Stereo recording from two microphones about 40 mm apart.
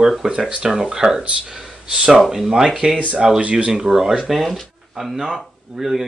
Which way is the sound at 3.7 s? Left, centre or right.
Centre.